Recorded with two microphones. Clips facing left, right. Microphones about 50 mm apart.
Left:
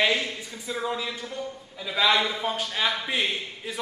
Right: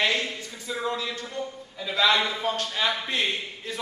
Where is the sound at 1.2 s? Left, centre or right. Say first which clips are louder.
Right 1 dB; centre.